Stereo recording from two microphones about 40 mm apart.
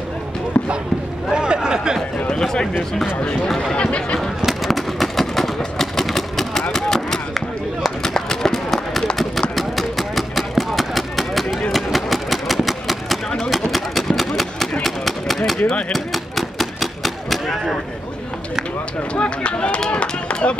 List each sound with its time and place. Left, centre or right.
0.5 s basketball bounce: left
1.3 s a sound: right
2.2 s speech: centre
3.4 s speech: centre
3.7 s speech: left
4.5 s run: centre
5.6 s vehicle: centre
6.7 s a sound: centre
8.0 s run: centre
9.6 s a sound: centre
11.7 s engine: centre
13.5 s a sound: centre
19.1 s run: left